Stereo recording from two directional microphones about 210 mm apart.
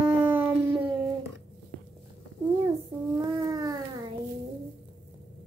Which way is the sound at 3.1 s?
15° right (ahead or behind).